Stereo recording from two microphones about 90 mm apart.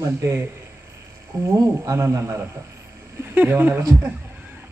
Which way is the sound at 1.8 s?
35° right (ahead or behind).